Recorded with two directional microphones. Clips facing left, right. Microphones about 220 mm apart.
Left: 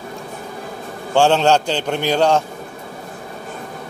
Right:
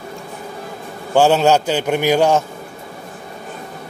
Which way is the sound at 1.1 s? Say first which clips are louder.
Right 1 dB; 5° right (ahead or behind).